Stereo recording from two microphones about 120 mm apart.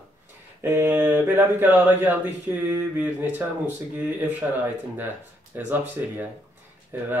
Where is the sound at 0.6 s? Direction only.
20° right (ahead or behind).